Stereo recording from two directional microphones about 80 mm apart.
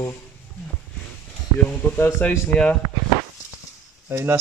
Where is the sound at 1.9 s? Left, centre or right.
Left.